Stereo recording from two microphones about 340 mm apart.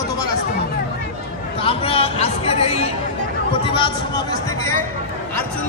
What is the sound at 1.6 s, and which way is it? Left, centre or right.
Speech, centre.